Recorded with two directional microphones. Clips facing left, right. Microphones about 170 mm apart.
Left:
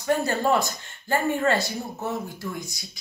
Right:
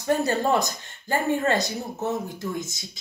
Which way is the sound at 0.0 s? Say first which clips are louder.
Right 1 dB; 20° right (ahead or behind).